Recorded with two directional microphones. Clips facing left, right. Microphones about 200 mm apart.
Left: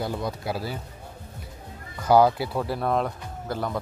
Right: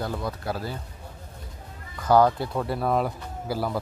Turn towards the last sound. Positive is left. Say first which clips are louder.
# right 1 dB
turn(degrees=-5)  # may be behind; listen again after turning